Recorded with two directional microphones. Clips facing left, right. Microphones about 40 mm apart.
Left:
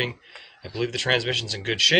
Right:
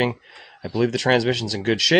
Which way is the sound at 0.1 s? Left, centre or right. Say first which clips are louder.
Right 5 dB; centre.